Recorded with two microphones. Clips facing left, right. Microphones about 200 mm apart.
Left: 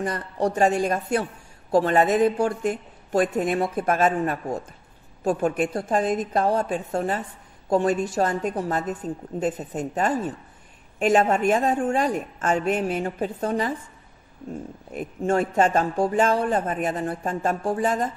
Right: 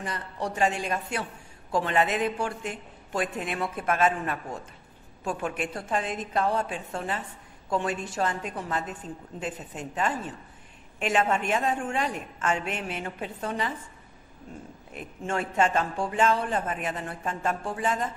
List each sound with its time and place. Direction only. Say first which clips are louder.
0.0 s speech: left 8 dB; 45° left (ahead or behind)
14.9 s speech: left 9 dB; 40° left (ahead or behind)